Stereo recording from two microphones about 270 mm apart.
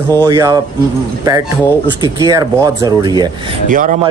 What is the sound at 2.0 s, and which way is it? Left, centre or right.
Speech, centre.